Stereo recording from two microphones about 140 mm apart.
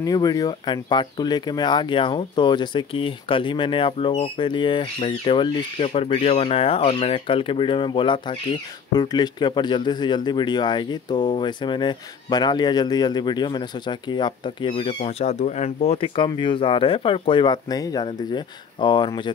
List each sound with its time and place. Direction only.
0.0 s speech: 25° left (ahead or behind)